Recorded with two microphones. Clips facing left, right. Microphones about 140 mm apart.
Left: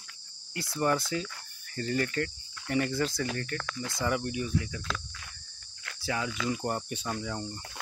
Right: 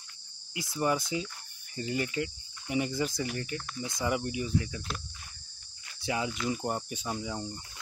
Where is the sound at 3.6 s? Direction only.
85° left.